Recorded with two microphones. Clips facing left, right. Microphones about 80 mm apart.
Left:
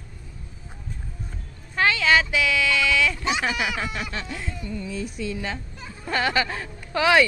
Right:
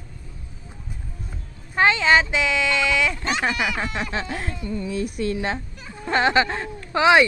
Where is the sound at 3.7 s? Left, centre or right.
Right.